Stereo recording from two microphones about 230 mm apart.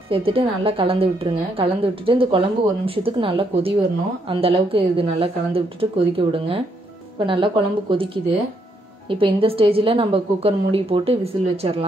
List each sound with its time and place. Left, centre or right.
0.1 s a woman's voice: right